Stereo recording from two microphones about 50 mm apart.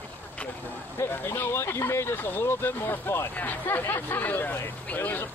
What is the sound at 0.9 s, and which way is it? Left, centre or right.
Speech, left.